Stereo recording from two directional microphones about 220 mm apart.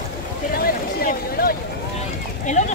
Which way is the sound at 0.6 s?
40° left (ahead or behind).